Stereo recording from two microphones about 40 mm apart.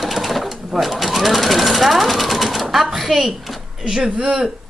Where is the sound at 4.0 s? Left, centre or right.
Right.